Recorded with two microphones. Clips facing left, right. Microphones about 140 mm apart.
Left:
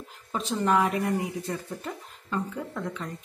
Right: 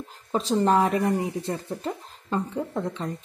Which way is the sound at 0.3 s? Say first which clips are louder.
Right 4 dB; 35° right (ahead or behind).